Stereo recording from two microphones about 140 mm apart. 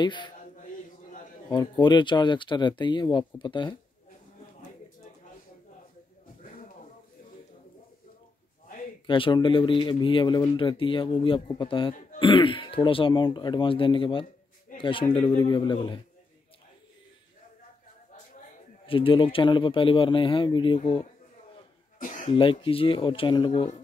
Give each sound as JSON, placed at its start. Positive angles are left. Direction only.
{"t": 0.0, "sound": "speech", "side_deg": 35}
{"t": 1.5, "sound": "speech", "side_deg": 30}
{"t": 9.0, "sound": "speech", "side_deg": 35}
{"t": 18.9, "sound": "speech", "side_deg": 40}
{"t": 22.2, "sound": "speech", "side_deg": 40}